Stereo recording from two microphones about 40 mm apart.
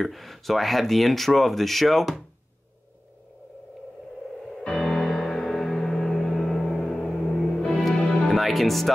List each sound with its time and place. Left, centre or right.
0.0 s speech: centre
4.6 s music: centre
7.2 s music: left
8.2 s speech: centre